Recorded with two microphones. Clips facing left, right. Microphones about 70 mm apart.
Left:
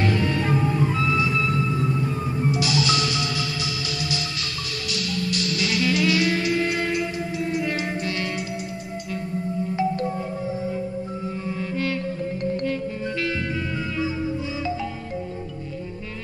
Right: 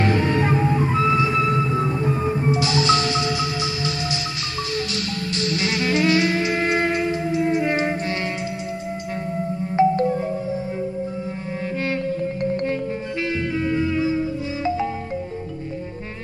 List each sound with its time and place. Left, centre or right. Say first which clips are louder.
0.0 s music: right 3 dB; right
9.8 s music: right 8 dB; right
11.8 s music: right 4 dB; right